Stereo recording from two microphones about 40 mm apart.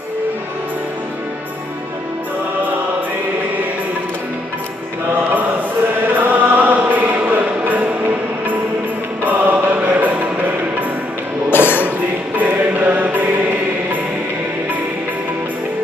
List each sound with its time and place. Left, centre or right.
6.1 s chant: right
9.2 s mantra: right
9.9 s music: right
11.5 s music: left
12.4 s music: right